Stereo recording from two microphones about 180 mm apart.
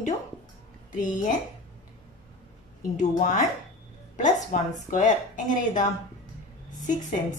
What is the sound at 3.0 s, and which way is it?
Speech, 40° left (ahead or behind).